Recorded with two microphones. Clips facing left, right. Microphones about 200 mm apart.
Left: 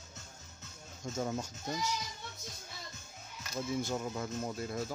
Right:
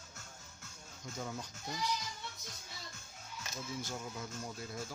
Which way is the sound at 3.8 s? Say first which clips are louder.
Left 7 dB; 55° left (ahead or behind).